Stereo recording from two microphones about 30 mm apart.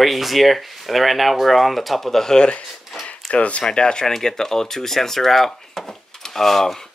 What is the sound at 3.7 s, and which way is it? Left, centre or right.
Speech, left.